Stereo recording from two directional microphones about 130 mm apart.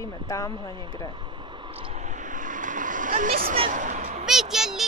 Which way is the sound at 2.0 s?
75° right (ahead or behind).